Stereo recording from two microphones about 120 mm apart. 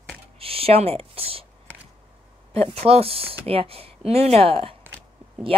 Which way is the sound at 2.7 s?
55° right (ahead or behind).